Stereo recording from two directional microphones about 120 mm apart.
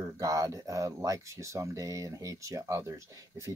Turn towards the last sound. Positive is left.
turn(degrees=-25)  # may be behind; listen again after turning